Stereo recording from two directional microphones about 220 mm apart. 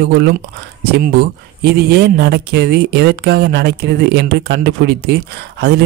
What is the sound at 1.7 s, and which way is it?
Speech, 45° right (ahead or behind).